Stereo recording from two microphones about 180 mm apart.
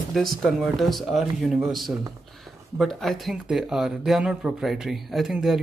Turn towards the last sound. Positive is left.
turn(degrees=0)  # may be behind; listen again after turning